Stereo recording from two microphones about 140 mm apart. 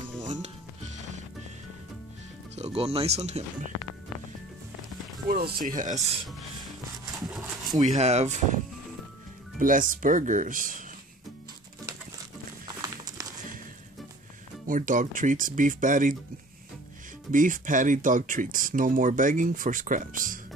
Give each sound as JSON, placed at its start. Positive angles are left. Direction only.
{"t": 0.2, "sound": "music", "side_deg": -60}
{"t": 2.5, "sound": "speech", "side_deg": -50}
{"t": 5.2, "sound": "speech", "side_deg": -90}
{"t": 5.7, "sound": "speech", "side_deg": -70}
{"t": 7.2, "sound": "a sound", "side_deg": 0}
{"t": 8.0, "sound": "speech", "side_deg": -50}
{"t": 9.6, "sound": "speech", "side_deg": -75}
{"t": 12.8, "sound": "a sound", "side_deg": -25}
{"t": 14.7, "sound": "speech", "side_deg": -70}
{"t": 17.3, "sound": "speech", "side_deg": -70}